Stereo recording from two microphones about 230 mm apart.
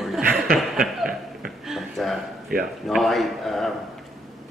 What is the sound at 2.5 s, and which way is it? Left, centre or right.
Speech, right.